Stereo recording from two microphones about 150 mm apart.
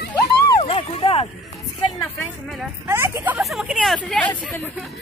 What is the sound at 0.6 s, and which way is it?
Speech, 40° left (ahead or behind).